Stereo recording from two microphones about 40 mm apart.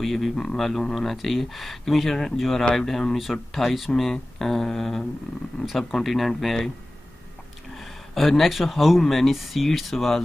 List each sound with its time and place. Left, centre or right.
0.0 s speech: centre
7.7 s speech: centre